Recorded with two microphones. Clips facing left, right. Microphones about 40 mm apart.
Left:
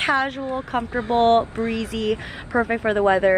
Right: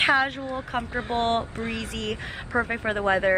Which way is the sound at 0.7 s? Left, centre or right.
Centre.